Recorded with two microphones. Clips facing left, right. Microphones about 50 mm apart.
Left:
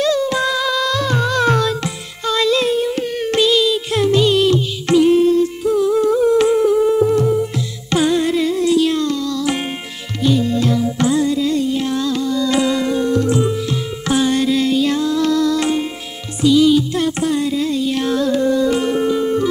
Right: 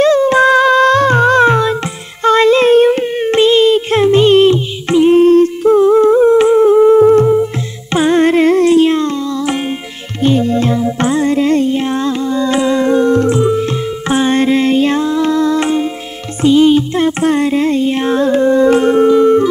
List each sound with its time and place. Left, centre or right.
0.0 s music: right
1.5 s music: right
2.2 s music: right
3.0 s music: right
5.1 s humming: right
7.9 s music: right
18.7 s music: right